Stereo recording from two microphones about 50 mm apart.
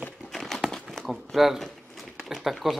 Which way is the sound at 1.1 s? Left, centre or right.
Centre.